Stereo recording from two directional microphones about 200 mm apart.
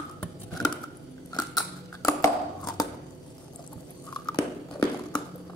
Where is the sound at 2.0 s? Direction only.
15° left (ahead or behind).